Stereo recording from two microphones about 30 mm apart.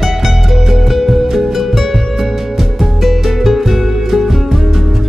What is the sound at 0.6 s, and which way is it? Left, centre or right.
Music, centre.